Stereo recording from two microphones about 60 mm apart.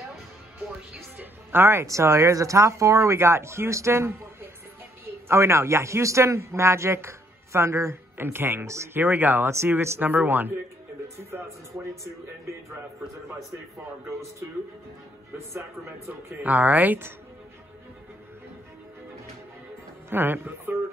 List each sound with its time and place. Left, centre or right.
0.9 s music: right
1.9 s a man's voice: right
2.3 s a man's voice: right
7.9 s speech: right
11.1 s a man's voice: right
16.4 s speech: right
20.1 s speech: right